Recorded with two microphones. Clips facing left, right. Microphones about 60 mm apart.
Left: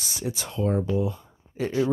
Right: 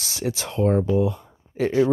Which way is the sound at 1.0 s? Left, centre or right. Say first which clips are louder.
Right 5 dB; right.